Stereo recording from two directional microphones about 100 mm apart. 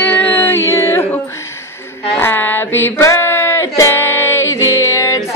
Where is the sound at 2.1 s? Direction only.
20° left (ahead or behind).